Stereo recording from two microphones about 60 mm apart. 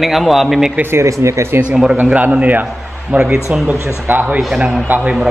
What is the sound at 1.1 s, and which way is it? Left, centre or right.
Speech, right.